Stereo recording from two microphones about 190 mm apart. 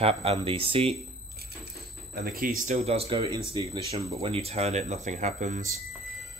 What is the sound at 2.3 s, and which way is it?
Speech, 45° right (ahead or behind).